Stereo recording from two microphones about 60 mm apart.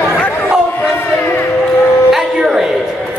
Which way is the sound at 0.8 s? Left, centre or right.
Left.